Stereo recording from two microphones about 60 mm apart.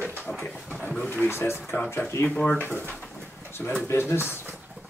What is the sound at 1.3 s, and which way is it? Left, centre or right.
Speech, left.